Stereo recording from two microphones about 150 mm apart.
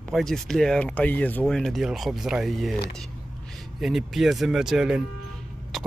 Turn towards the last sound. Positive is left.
turn(degrees=0)  # may be behind; listen again after turning